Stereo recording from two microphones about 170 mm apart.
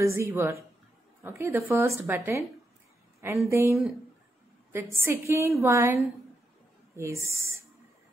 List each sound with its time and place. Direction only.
0.0 s a woman's voice: 15° right (ahead or behind)
3.4 s a woman's voice: 15° right (ahead or behind)